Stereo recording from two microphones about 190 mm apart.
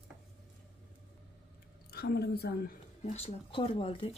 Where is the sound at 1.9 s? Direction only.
55° left (ahead or behind).